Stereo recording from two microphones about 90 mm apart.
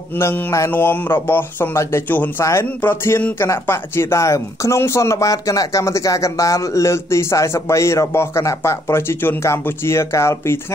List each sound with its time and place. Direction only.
0.2 s speech: 30° left (ahead or behind)